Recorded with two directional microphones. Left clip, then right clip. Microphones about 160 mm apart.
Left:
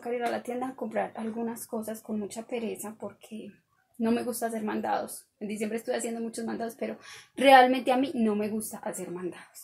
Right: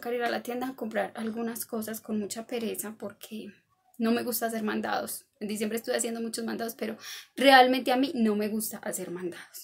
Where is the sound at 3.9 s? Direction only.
25° right (ahead or behind).